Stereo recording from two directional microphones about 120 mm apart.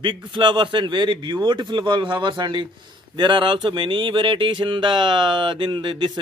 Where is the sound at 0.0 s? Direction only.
40° right (ahead or behind).